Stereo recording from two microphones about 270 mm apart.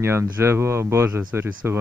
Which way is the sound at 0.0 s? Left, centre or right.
Centre.